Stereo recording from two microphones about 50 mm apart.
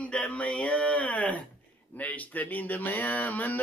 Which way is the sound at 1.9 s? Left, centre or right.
Left.